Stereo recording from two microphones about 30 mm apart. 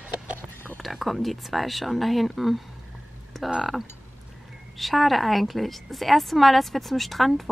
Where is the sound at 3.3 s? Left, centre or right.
Centre.